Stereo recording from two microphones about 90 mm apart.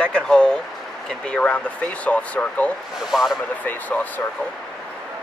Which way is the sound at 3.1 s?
Centre (ahead or behind).